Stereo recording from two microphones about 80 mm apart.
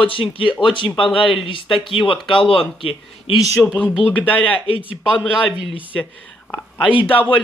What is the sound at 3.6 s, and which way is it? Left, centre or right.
Speech, centre.